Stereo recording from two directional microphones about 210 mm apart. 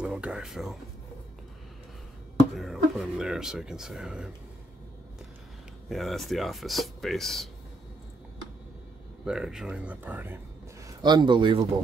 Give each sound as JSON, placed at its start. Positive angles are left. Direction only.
{"t": 0.0, "sound": "speech", "side_deg": -5}
{"t": 2.5, "sound": "speech", "side_deg": 0}
{"t": 5.9, "sound": "speech", "side_deg": 0}
{"t": 9.2, "sound": "speech", "side_deg": -5}
{"t": 11.0, "sound": "speech", "side_deg": -20}